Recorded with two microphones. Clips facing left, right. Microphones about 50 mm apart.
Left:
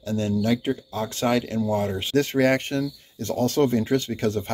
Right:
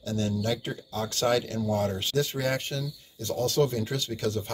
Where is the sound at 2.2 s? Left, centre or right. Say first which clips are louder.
Left 8 dB; left.